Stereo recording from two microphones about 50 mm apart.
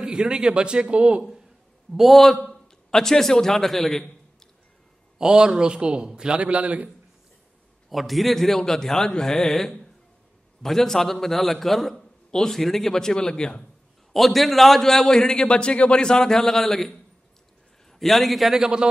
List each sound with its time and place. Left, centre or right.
0.0 s a man's voice: centre
2.0 s a man's voice: centre
5.2 s a man's voice: centre
7.9 s a man's voice: centre
14.1 s a man's voice: centre
17.9 s a man's voice: centre